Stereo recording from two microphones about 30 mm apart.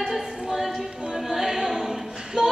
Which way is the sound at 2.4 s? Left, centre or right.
Right.